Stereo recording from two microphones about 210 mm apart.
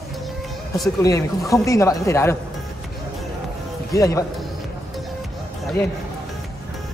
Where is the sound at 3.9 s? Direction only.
15° left (ahead or behind).